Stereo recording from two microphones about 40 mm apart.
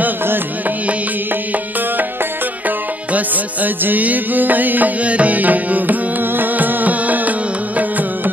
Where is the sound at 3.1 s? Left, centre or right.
Right.